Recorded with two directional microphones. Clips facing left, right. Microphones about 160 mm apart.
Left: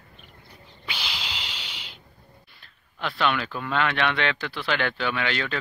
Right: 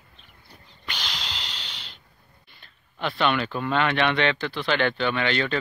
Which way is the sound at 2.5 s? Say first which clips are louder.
Right 2 dB; centre (ahead or behind).